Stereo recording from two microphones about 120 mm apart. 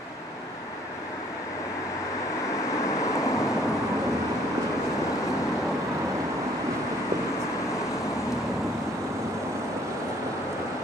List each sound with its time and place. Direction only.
2.9 s vehicle: 25° left (ahead or behind)